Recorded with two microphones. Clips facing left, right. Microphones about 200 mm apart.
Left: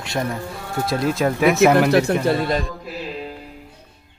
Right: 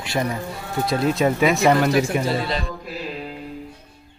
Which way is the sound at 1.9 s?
60° left (ahead or behind).